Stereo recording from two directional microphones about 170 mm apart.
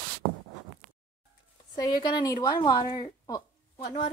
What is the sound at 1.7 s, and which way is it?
Speech, 25° left (ahead or behind).